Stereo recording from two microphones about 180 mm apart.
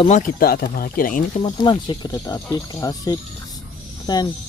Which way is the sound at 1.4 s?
25° left (ahead or behind).